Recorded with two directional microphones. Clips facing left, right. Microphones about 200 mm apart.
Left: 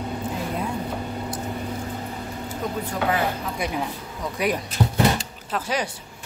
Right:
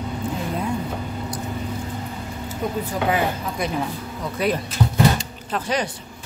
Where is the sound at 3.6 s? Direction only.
10° left (ahead or behind).